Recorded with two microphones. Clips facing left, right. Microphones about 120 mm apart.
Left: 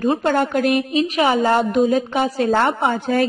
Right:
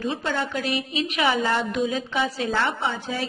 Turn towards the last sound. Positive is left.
turn(degrees=50)  # may be behind; listen again after turning